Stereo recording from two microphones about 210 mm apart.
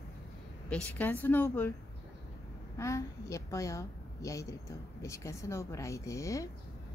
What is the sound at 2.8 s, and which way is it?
A woman's voice, 15° left (ahead or behind).